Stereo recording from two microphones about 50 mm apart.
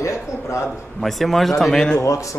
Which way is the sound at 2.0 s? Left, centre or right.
Left.